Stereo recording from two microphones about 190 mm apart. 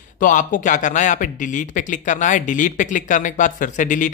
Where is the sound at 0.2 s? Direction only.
45° left (ahead or behind).